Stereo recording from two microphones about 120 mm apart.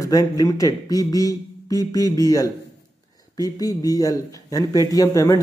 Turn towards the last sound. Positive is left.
turn(degrees=25)  # may be behind; listen again after turning